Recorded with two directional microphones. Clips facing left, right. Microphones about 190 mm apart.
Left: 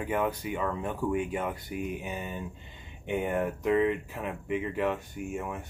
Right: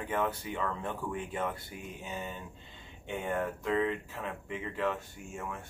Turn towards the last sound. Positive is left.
turn(degrees=15)  # may be behind; listen again after turning